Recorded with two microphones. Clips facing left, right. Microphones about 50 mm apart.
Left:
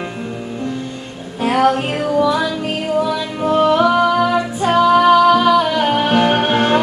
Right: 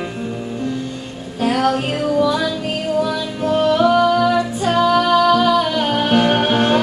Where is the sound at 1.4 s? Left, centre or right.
Centre.